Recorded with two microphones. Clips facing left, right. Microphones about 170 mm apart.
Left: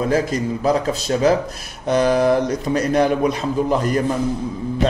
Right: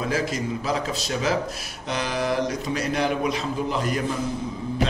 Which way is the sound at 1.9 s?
50° left (ahead or behind).